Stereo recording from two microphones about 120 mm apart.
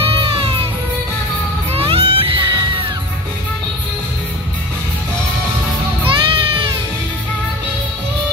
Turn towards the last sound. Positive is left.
turn(degrees=-45)  # may be behind; listen again after turning